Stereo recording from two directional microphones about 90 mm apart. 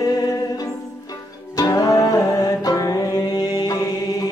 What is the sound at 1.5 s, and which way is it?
Music, 45° left (ahead or behind).